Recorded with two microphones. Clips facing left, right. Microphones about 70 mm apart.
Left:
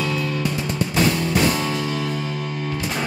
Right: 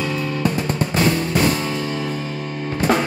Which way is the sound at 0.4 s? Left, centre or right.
Right.